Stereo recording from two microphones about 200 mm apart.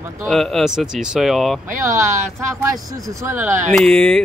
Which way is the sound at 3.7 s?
5° left (ahead or behind).